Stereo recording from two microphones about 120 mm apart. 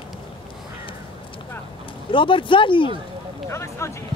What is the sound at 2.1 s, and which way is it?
Speech, 45° left (ahead or behind).